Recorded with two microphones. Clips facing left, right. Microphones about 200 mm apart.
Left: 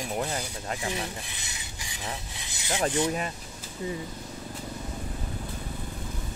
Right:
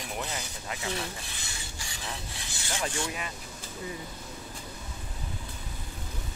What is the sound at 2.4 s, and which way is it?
Rub, 20° left (ahead or behind).